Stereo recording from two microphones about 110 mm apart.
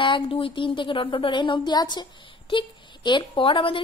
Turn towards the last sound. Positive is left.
turn(degrees=50)  # may be behind; listen again after turning